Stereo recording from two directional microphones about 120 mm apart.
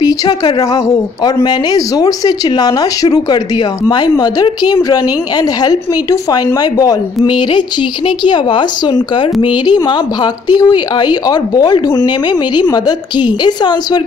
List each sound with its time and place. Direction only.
0.0 s a woman's voice: 35° left (ahead or behind)